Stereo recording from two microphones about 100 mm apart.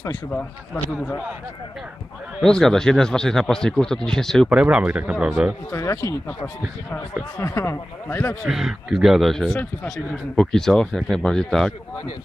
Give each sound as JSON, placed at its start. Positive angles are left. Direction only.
{"t": 0.8, "sound": "speech", "side_deg": 5}
{"t": 2.4, "sound": "speech", "side_deg": 5}
{"t": 4.5, "sound": "a man's voice", "side_deg": -10}
{"t": 5.7, "sound": "speech", "side_deg": 30}
{"t": 6.2, "sound": "speech", "side_deg": 20}
{"t": 8.5, "sound": "speech", "side_deg": -5}